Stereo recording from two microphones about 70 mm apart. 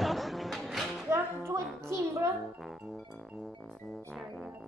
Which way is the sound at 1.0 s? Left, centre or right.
Right.